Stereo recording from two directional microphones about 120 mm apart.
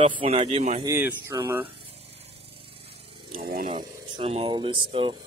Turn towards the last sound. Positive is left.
turn(degrees=-45)  # may be behind; listen again after turning